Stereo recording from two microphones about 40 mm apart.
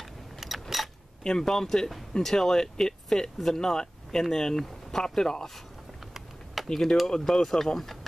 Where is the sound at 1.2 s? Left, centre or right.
Centre.